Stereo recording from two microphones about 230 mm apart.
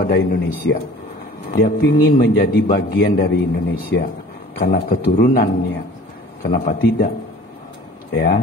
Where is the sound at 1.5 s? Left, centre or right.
Left.